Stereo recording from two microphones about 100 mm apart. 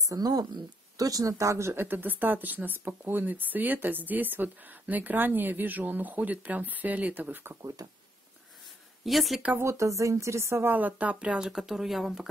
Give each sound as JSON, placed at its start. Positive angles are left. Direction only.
{"t": 0.1, "sound": "speech", "side_deg": -40}
{"t": 9.0, "sound": "speech", "side_deg": 0}
{"t": 9.6, "sound": "speech", "side_deg": -30}